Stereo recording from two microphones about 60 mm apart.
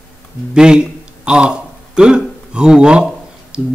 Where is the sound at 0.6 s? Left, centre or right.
Centre.